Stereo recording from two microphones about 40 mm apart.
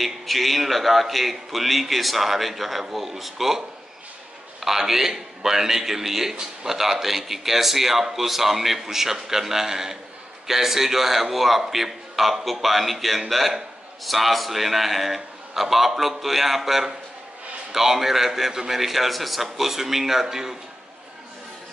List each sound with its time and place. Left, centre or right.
0.0 s a man's voice: centre